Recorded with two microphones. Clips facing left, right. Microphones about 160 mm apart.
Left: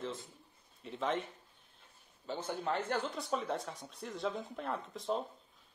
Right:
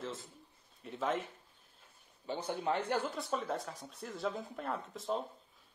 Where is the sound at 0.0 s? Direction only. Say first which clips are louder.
Left 1 dB; centre (ahead or behind).